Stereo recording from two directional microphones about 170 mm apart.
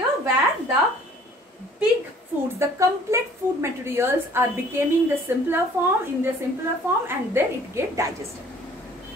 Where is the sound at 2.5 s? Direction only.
15° right (ahead or behind).